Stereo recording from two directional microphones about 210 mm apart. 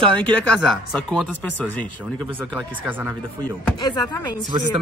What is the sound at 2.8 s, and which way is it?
Speech, 10° right (ahead or behind).